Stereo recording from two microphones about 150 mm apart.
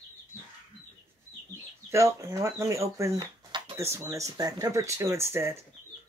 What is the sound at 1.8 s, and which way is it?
Speech, 20° right (ahead or behind).